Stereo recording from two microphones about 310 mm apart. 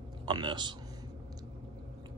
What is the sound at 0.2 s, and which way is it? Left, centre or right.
Speech, centre.